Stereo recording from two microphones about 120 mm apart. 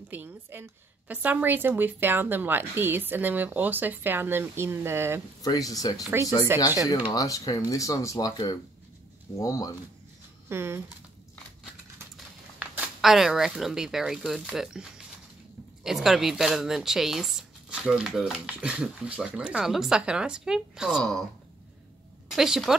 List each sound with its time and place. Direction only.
0.1 s a woman's voice: 15° right (ahead or behind)
5.4 s speech: 30° left (ahead or behind)
10.5 s speech: 20° right (ahead or behind)
12.6 s a sound: 10° right (ahead or behind)
13.0 s speech: 5° right (ahead or behind)
22.3 s speech: 5° right (ahead or behind)